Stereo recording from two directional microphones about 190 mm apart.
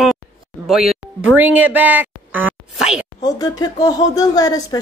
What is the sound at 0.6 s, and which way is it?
Speech, centre (ahead or behind).